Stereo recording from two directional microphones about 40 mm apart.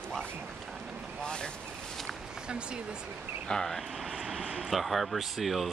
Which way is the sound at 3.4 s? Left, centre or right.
Centre.